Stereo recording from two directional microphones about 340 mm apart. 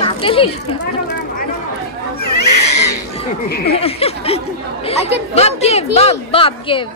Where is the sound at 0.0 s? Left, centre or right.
Centre.